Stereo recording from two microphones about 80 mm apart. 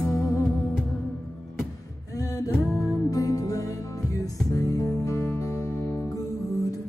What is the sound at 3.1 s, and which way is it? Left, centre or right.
Music, left.